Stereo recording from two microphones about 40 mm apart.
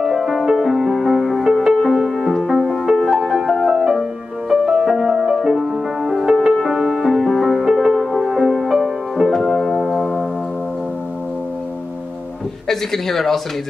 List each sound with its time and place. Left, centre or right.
0.3 s music: centre
2.0 s music: centre
6.3 s music: centre
12.6 s speech: centre